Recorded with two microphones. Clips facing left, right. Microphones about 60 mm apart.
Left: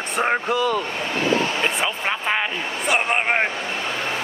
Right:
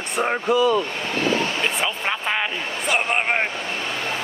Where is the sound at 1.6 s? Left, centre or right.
Centre.